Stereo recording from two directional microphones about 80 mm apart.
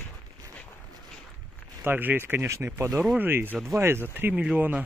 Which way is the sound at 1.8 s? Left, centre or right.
Right.